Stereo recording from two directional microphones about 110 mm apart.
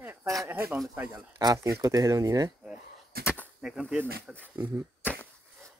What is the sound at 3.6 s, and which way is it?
Speech, 10° right (ahead or behind).